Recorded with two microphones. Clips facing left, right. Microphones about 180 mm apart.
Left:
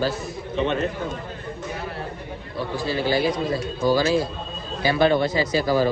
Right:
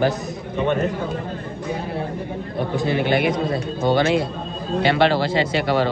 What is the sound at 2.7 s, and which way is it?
Speech, 20° right (ahead or behind).